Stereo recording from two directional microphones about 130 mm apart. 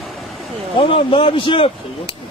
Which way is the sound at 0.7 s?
45° left (ahead or behind).